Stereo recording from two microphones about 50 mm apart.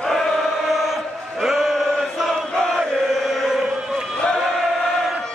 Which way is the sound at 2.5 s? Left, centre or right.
Centre.